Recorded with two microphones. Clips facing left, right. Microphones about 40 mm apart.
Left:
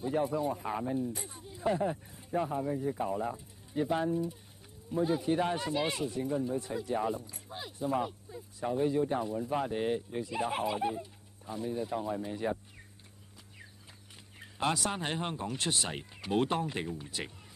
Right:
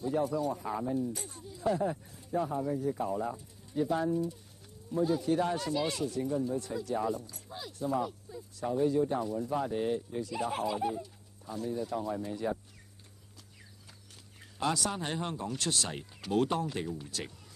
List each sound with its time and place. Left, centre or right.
0.0 s speech: left
14.4 s music: left
14.8 s speech: left